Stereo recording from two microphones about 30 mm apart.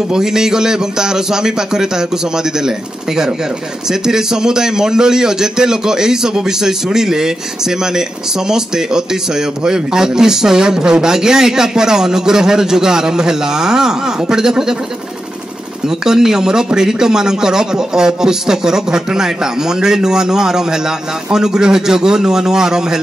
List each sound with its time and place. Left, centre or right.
0.1 s a man's voice: centre
15.9 s a man's voice: centre